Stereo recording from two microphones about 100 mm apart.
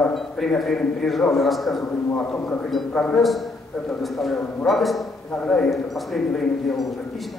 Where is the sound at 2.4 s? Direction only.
15° left (ahead or behind).